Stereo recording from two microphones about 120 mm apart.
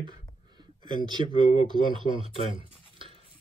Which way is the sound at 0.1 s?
40° right (ahead or behind).